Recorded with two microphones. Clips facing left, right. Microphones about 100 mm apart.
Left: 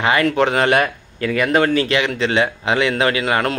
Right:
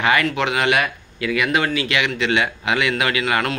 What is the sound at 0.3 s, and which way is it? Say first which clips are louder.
A man's voice: left 4 dB; 40° left (ahead or behind).